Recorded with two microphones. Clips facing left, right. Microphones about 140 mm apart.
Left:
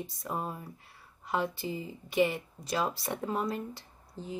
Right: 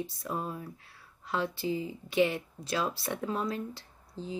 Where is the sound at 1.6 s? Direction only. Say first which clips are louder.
Right 4 dB; centre (ahead or behind).